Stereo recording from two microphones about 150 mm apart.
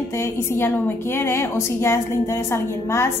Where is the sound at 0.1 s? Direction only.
15° left (ahead or behind).